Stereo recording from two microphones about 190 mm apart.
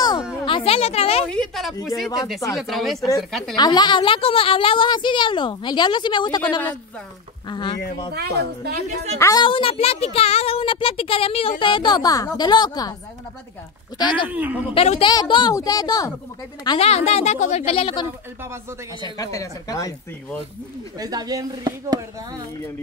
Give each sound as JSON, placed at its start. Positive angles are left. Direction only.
{"t": 0.5, "sound": "a woman's voice", "side_deg": 30}
{"t": 1.3, "sound": "a woman's voice", "side_deg": 0}
{"t": 3.5, "sound": "a woman's voice", "side_deg": 20}
{"t": 7.4, "sound": "a woman's voice", "side_deg": 25}
{"t": 8.1, "sound": "speech", "side_deg": -55}
{"t": 8.8, "sound": "a woman's voice", "side_deg": -35}
{"t": 9.2, "sound": "a woman's voice", "side_deg": 20}
{"t": 13.9, "sound": "a woman's voice", "side_deg": 25}
{"t": 14.3, "sound": "speech", "side_deg": -10}
{"t": 14.7, "sound": "a woman's voice", "side_deg": 30}
{"t": 16.6, "sound": "a woman's voice", "side_deg": 30}
{"t": 21.0, "sound": "speech", "side_deg": -20}